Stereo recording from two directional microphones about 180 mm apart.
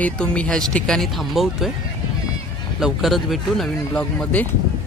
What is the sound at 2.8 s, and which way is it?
Speech, centre (ahead or behind).